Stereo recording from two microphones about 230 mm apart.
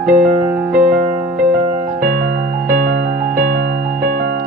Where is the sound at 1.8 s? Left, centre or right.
Right.